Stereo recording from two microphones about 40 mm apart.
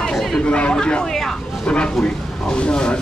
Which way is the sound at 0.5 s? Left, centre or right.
Left.